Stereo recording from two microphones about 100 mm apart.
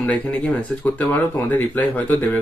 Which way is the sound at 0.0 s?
15° left (ahead or behind).